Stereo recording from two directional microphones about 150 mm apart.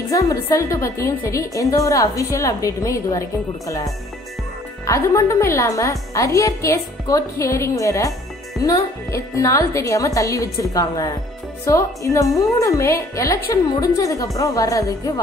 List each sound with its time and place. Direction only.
0.1 s a woman's voice: 20° left (ahead or behind)
9.1 s a woman's voice: 20° left (ahead or behind)